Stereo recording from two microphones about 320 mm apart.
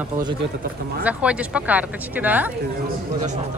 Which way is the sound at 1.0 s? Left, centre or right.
Centre.